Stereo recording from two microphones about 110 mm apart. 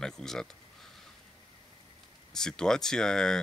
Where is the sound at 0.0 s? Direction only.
5° left (ahead or behind).